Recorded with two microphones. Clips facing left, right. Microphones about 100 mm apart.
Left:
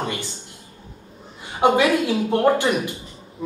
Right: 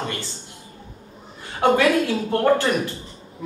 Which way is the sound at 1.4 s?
15° left (ahead or behind).